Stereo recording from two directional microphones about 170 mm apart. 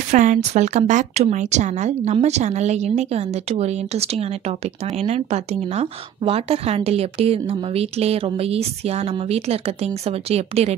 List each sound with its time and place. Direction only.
0.1 s speech: 45° right (ahead or behind)